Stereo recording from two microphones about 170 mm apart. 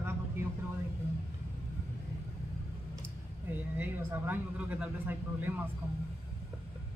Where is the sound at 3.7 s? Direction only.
10° right (ahead or behind).